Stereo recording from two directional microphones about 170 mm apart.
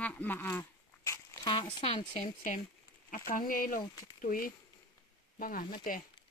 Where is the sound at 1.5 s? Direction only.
30° left (ahead or behind).